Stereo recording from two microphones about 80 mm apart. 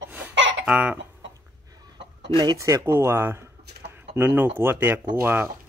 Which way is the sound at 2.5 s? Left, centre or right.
Right.